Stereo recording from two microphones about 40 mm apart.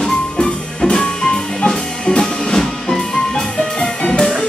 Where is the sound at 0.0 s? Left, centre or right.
Left.